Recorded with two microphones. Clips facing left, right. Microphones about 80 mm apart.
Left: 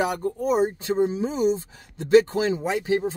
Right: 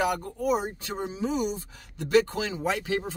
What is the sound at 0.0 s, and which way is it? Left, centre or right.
Speech, left.